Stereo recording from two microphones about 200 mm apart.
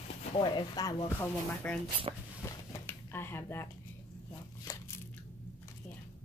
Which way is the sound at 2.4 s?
10° left (ahead or behind).